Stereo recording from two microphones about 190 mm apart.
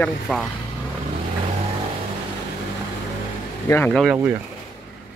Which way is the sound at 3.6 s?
10° left (ahead or behind).